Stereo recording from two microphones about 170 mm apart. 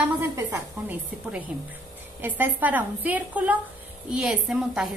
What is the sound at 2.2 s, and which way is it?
A woman's voice, 10° right (ahead or behind).